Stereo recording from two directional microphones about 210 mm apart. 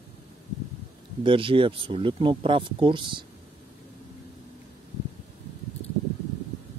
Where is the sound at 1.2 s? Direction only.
25° right (ahead or behind).